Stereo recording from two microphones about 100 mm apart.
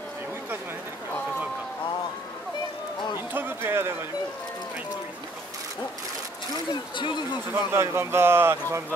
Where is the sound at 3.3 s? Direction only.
20° right (ahead or behind).